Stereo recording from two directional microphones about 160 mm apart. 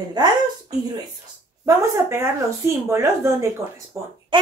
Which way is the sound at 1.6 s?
20° right (ahead or behind).